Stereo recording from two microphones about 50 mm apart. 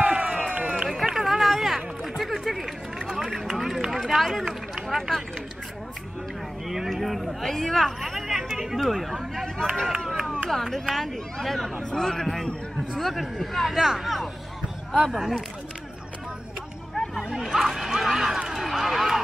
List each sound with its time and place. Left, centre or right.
0.0 s run: centre
1.0 s a sound: centre
2.4 s run: centre
4.8 s speech: centre
6.7 s hubbub: centre
8.8 s speech: centre
9.8 s run: centre
10.5 s a man's voice: centre
16.9 s chatter: centre
17.3 s speech: centre
18.5 s run: centre